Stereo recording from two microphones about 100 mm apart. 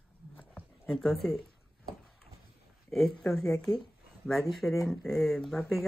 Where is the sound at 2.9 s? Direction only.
5° left (ahead or behind).